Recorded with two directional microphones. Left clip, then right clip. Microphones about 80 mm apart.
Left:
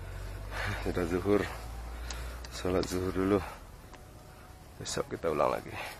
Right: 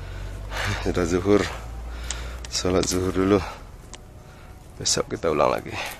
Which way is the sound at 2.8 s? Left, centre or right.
Centre.